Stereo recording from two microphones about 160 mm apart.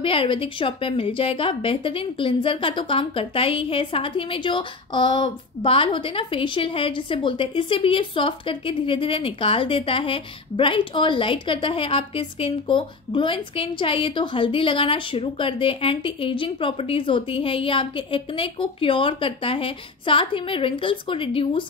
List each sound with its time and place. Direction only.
0.0 s a woman's voice: 35° left (ahead or behind)